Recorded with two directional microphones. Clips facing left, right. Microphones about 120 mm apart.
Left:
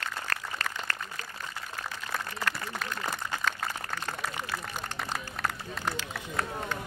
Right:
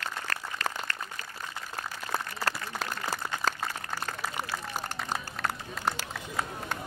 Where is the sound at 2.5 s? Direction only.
35° right (ahead or behind).